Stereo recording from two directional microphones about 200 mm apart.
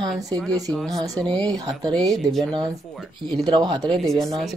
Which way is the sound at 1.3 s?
20° right (ahead or behind).